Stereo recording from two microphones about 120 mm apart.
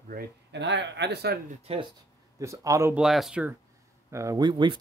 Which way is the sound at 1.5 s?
55° right (ahead or behind).